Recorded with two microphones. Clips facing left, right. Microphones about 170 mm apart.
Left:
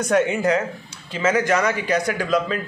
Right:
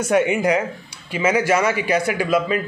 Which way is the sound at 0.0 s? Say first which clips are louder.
Right 1 dB; 10° right (ahead or behind).